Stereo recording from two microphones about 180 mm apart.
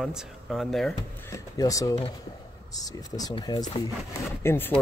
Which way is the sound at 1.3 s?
20° left (ahead or behind).